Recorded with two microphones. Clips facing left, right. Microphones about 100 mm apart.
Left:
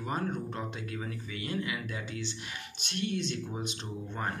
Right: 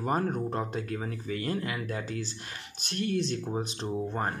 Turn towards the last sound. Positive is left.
turn(degrees=-35)  # may be behind; listen again after turning